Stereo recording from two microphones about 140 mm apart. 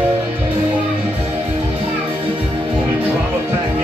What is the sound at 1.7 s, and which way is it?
Music, 40° right (ahead or behind).